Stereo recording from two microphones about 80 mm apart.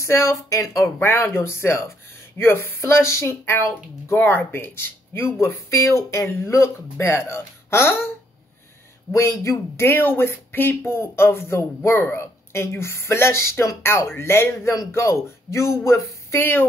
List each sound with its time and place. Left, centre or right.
0.0 s speech: left
0.8 s speech: left
9.1 s speech: left